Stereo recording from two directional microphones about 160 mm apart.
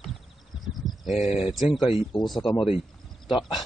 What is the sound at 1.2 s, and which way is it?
Speech, 40° left (ahead or behind).